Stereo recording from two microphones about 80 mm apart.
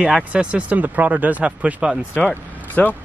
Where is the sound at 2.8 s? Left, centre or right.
Left.